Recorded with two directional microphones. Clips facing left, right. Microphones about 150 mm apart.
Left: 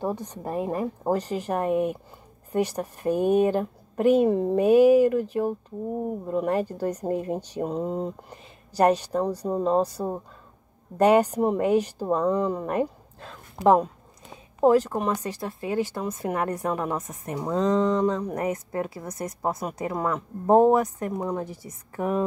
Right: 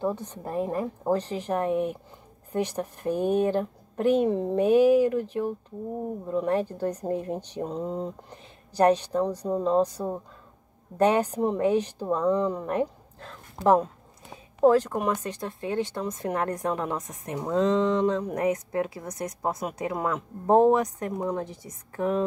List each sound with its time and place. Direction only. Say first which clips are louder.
0.0 s speech: even; 15° left (ahead or behind)
6.2 s a woman's voice: even; 10° left (ahead or behind)